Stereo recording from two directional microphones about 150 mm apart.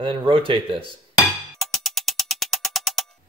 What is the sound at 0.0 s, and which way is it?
Speech, 35° right (ahead or behind).